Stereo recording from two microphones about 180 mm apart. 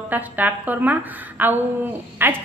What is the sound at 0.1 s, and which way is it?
A woman's voice, 10° right (ahead or behind).